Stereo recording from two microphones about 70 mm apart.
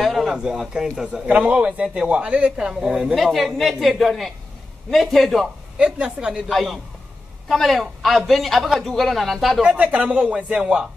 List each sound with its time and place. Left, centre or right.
0.0 s a sound: centre
0.4 s a man's voice: centre
5.8 s a man's voice: centre
9.7 s a man's voice: centre